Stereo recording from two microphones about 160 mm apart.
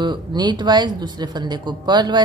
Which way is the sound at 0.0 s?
25° right (ahead or behind).